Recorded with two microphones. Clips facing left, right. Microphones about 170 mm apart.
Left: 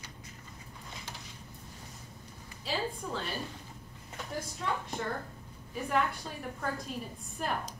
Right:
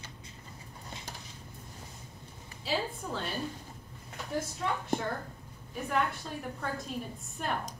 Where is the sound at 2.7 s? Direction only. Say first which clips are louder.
Right 3 dB; centre (ahead or behind).